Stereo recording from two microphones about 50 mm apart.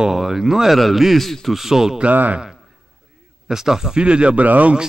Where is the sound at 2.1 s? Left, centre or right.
Right.